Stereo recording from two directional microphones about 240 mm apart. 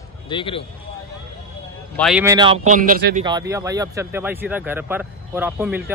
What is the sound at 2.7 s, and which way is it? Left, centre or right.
Speech, right.